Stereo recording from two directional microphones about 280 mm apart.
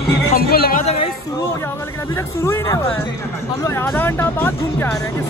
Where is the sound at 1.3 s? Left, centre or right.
Centre.